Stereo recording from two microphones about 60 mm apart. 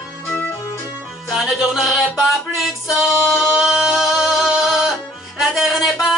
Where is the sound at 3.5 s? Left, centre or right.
Centre.